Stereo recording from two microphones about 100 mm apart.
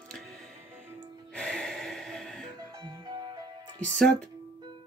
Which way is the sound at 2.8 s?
45° right (ahead or behind).